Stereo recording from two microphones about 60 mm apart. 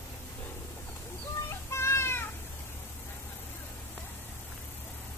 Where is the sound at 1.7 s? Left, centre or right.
Left.